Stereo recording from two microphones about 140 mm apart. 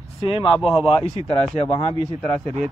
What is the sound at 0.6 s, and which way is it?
Speech, 5° right (ahead or behind).